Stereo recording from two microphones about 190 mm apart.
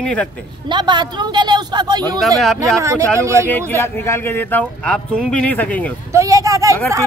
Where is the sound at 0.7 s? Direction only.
25° right (ahead or behind).